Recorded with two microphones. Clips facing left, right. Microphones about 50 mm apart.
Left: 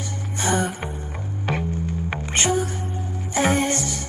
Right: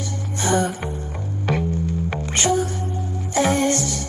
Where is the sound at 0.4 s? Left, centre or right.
Left.